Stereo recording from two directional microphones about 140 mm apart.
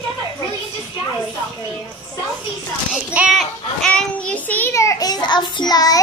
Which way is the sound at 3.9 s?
10° left (ahead or behind).